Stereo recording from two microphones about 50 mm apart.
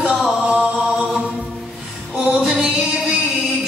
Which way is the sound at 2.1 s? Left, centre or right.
Centre.